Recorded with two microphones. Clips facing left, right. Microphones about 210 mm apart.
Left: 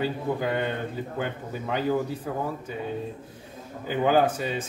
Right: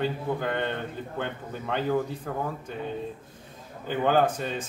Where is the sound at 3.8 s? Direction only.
5° left (ahead or behind).